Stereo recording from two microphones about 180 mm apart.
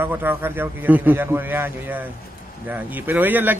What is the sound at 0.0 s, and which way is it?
A man's voice, 10° right (ahead or behind).